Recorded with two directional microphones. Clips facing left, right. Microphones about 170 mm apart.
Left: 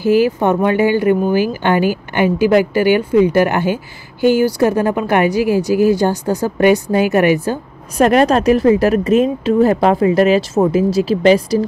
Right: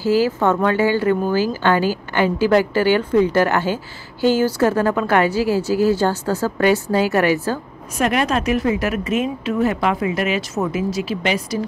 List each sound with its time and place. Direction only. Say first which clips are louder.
0.0 s speech: left 4 dB; 15° left (ahead or behind)
8.0 s speech: left 7 dB; 40° left (ahead or behind)